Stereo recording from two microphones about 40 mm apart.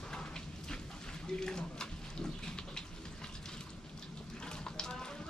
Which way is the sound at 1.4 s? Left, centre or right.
Centre.